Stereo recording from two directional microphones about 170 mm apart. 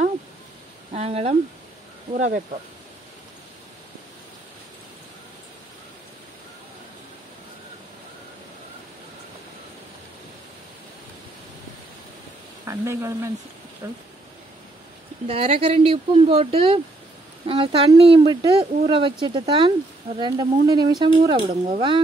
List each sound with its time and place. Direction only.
0.9 s speech: 35° right (ahead or behind)
12.6 s speech: 15° right (ahead or behind)
15.2 s speech: 35° right (ahead or behind)